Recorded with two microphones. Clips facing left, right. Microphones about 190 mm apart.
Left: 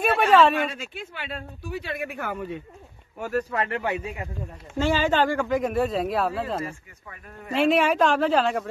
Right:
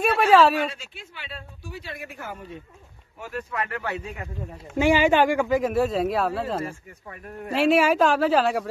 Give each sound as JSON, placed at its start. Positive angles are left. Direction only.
{"t": 0.0, "sound": "a woman's voice", "side_deg": 0}
{"t": 0.7, "sound": "speech", "side_deg": 55}
{"t": 3.2, "sound": "speech", "side_deg": 40}
{"t": 3.6, "sound": "a man's voice", "side_deg": 25}
{"t": 3.9, "sound": "a man's voice", "side_deg": 10}
{"t": 4.7, "sound": "speech", "side_deg": -15}
{"t": 5.6, "sound": "a woman's voice", "side_deg": 0}